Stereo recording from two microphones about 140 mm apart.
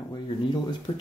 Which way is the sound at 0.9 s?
30° left (ahead or behind).